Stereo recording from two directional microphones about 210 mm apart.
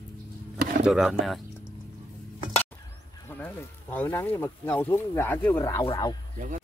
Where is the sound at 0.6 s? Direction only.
40° right (ahead or behind).